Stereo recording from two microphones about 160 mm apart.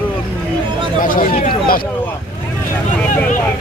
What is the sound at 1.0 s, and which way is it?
Speech, 60° left (ahead or behind).